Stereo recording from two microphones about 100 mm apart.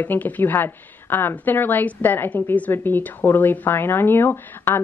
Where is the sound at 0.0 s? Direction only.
20° left (ahead or behind).